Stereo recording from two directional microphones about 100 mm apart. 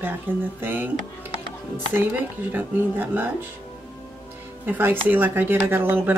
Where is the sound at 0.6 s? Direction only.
20° right (ahead or behind).